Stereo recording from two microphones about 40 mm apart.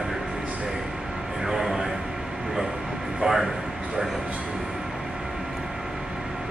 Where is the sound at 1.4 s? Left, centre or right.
Centre.